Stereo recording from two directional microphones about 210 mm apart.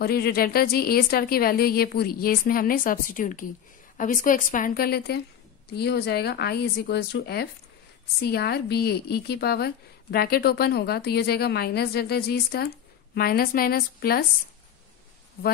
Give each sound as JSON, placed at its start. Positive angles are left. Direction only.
{"t": 0.0, "sound": "a woman's voice", "side_deg": 50}